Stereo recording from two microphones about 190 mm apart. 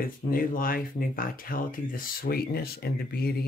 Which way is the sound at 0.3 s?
50° left (ahead or behind).